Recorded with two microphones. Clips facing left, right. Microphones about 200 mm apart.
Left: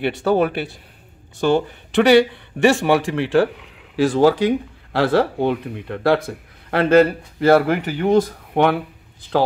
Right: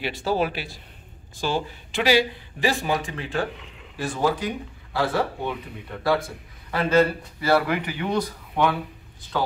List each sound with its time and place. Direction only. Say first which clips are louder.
0.0 s a man's voice: left 7 dB; 60° left (ahead or behind)
6.7 s speech: left 6 dB; 65° left (ahead or behind)
9.3 s speech: left 8 dB; 90° left